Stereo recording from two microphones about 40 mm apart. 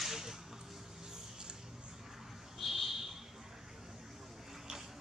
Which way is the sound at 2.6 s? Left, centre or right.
Centre.